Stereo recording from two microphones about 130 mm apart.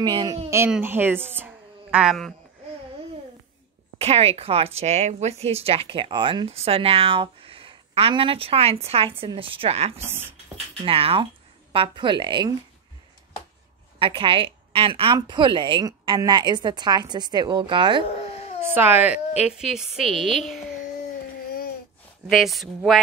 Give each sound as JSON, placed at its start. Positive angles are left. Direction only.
{"t": 0.0, "sound": "a woman's voice", "side_deg": -35}
{"t": 0.7, "sound": "a woman's voice", "side_deg": -15}
{"t": 4.0, "sound": "a woman's voice", "side_deg": -50}
{"t": 13.9, "sound": "a woman's voice", "side_deg": -40}
{"t": 18.6, "sound": "speech", "side_deg": -15}
{"t": 19.4, "sound": "a woman's voice", "side_deg": -5}
{"t": 22.3, "sound": "a woman's voice", "side_deg": 0}